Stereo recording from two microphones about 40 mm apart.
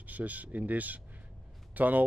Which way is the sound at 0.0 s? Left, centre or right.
Right.